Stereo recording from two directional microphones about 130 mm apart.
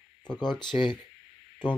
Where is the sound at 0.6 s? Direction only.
35° left (ahead or behind).